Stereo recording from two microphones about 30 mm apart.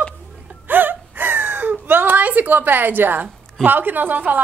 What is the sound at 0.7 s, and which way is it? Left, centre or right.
Wail, right.